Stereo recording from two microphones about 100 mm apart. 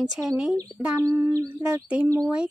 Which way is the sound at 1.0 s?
35° right (ahead or behind).